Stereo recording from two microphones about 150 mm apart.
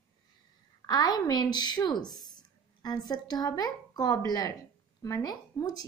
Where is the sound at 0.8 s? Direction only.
25° left (ahead or behind).